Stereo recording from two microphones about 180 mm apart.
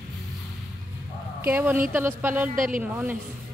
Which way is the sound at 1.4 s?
10° right (ahead or behind).